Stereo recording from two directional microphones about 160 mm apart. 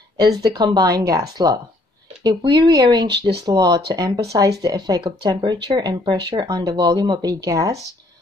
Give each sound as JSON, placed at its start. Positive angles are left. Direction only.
{"t": 0.2, "sound": "speech", "side_deg": -25}
{"t": 3.1, "sound": "speech", "side_deg": -90}
{"t": 3.4, "sound": "speech", "side_deg": -25}